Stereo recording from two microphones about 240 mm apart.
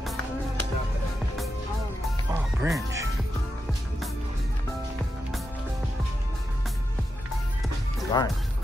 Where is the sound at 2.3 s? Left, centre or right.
Centre.